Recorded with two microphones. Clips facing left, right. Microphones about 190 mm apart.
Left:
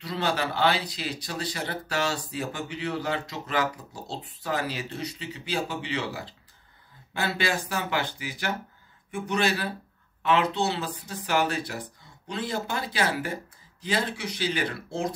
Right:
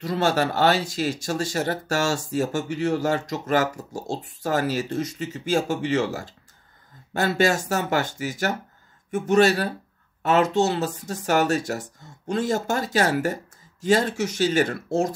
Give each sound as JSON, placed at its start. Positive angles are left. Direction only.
{"t": 0.0, "sound": "speech", "side_deg": -45}